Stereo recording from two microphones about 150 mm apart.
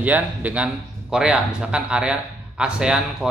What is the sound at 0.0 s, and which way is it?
Speech, 10° right (ahead or behind).